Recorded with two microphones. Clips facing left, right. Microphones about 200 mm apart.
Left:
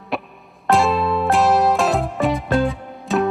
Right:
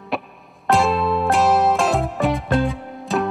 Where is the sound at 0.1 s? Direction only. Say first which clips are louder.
Even; centre (ahead or behind).